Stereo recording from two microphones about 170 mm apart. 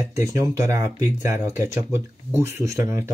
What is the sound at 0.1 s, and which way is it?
Speech, 15° right (ahead or behind).